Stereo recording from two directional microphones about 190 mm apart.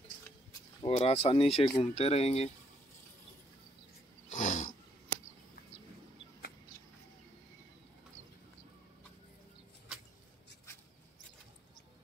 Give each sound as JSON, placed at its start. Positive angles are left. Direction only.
{"t": 0.8, "sound": "speech", "side_deg": 30}
{"t": 4.3, "sound": "roaring cats", "side_deg": 40}